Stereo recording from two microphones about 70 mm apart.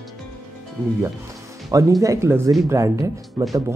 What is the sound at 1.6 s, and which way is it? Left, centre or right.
Speech, right.